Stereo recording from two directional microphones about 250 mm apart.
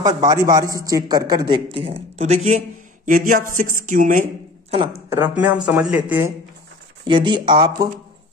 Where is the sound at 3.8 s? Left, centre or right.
Right.